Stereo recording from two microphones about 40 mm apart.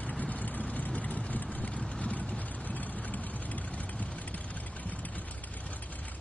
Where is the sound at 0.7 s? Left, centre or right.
Left.